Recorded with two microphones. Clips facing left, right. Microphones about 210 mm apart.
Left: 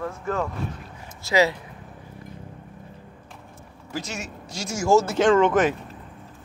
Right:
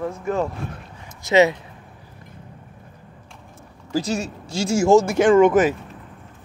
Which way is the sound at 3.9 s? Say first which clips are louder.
Right 9 dB; 35° right (ahead or behind).